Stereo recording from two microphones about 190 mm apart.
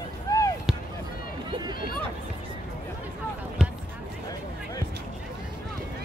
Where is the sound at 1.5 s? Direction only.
25° right (ahead or behind).